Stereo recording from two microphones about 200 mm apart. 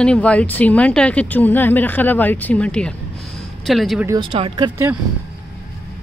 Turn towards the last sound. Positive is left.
turn(degrees=-20)  # may be behind; listen again after turning